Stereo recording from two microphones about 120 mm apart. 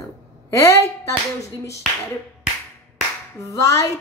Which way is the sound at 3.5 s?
25° left (ahead or behind).